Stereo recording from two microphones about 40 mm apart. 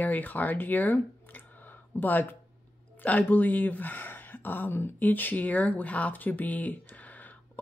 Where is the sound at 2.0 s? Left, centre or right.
Left.